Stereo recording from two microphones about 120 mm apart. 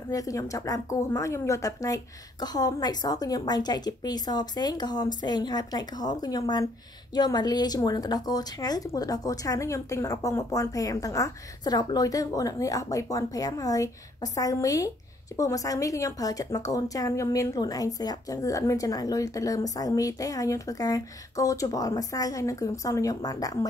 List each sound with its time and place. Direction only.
0.1 s a woman's voice: 30° left (ahead or behind)